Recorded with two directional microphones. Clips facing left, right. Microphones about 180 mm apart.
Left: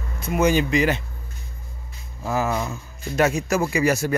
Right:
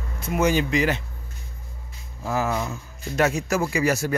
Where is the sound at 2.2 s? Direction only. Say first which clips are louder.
Left 1 dB; 10° left (ahead or behind).